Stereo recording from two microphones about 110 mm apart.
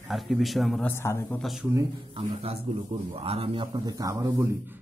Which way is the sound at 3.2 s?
60° right (ahead or behind).